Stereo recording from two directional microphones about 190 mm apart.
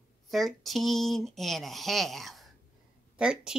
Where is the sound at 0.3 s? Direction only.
Centre (ahead or behind).